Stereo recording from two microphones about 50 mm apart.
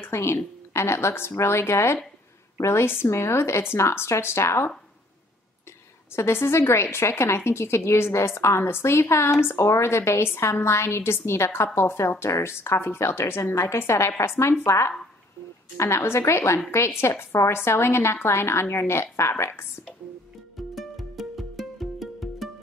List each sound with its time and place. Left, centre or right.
0.0 s a woman's voice: left
3.1 s a woman's voice: left
6.1 s a woman's voice: left
15.8 s a woman's voice: left
20.7 s music: centre